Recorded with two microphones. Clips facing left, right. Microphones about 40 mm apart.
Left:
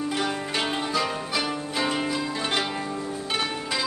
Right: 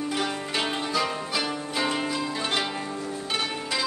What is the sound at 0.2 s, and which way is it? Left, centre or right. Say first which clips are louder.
Zither: left 1 dB; centre.